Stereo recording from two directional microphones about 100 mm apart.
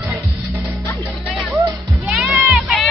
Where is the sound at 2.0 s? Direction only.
10° right (ahead or behind).